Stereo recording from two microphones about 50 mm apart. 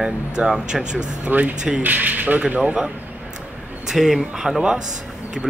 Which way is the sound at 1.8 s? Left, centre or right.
Right.